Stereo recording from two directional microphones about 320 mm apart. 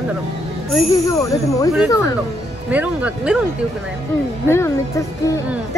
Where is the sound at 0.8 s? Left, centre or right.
Centre.